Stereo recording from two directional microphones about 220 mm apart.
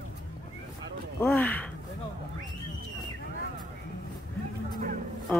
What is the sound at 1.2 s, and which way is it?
Speech, 10° left (ahead or behind).